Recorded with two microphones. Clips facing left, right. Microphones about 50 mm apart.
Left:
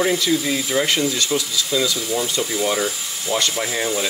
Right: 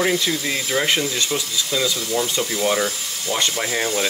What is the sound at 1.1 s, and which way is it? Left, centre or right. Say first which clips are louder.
Speech: left 2 dB; right.